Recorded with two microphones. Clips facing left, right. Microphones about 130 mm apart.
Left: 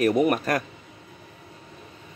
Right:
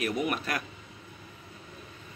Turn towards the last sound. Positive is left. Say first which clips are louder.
# left 9 dB
turn(degrees=45)  # may be behind; listen again after turning